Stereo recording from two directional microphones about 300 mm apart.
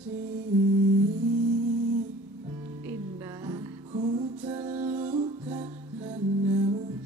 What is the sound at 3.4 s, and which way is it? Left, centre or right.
Music, centre.